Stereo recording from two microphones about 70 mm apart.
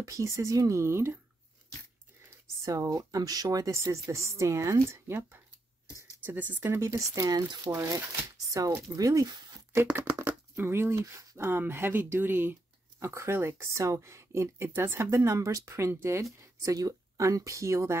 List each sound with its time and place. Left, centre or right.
0.0 s speech: right
2.6 s speech: right
6.2 s speech: right
6.7 s speech: right
7.7 s speech: right
10.2 s a sound: right
11.0 s speech: right
16.3 s speech: right